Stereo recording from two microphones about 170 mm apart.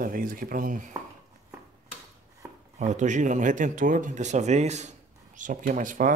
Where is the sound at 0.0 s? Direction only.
55° right (ahead or behind).